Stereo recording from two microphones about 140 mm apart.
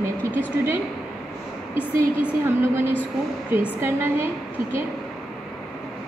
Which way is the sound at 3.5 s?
15° right (ahead or behind).